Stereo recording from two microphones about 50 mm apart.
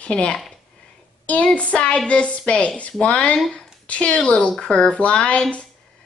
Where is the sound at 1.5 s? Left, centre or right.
Left.